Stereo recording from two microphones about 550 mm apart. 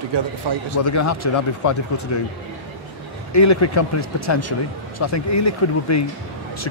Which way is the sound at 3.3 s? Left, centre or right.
Left.